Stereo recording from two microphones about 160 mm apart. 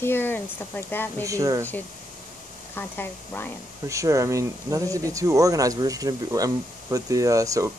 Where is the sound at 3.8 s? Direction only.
20° right (ahead or behind).